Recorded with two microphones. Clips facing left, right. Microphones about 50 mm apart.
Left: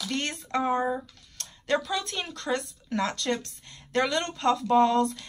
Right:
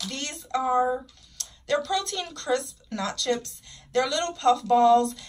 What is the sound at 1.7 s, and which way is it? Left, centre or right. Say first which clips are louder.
Speech: right 2 dB; centre.